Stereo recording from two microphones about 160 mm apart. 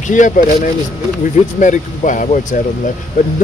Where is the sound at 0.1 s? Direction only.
50° left (ahead or behind).